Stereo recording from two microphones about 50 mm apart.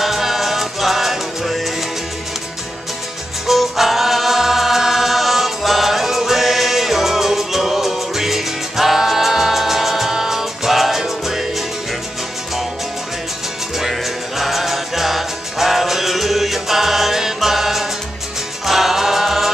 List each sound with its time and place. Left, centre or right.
0.0 s music: centre
3.4 s music: centre
13.7 s music: centre